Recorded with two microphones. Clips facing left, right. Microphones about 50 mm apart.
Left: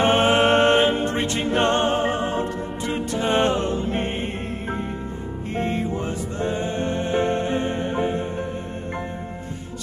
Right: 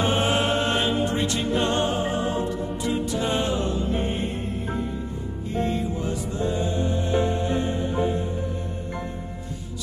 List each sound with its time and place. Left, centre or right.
0.0 s music: left